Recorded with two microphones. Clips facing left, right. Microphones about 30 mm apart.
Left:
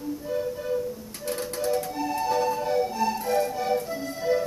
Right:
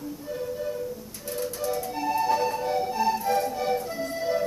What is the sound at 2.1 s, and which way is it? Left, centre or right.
Music, centre.